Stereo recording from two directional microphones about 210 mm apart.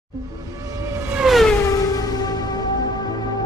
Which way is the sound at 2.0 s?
20° left (ahead or behind).